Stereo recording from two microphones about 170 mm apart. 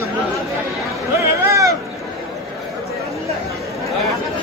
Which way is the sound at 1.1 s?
15° right (ahead or behind).